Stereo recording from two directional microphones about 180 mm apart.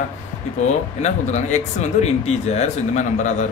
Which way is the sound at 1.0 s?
40° left (ahead or behind).